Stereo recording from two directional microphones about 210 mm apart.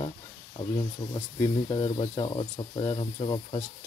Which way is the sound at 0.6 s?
20° left (ahead or behind).